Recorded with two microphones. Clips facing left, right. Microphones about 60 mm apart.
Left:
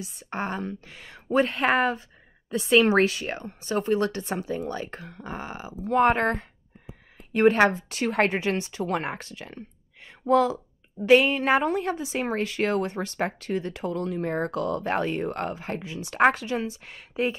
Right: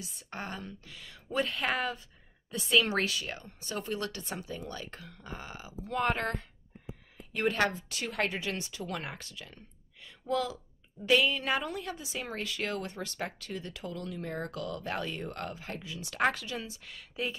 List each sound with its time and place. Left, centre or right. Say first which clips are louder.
0.0 s a woman's voice: left 9 dB; left
7.7 s a woman's voice: left 10 dB; left